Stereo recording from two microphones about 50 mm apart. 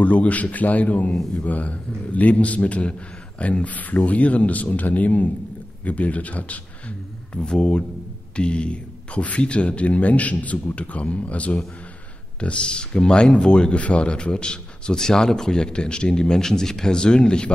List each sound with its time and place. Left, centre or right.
0.0 s a man's voice: left
7.4 s a man's voice: centre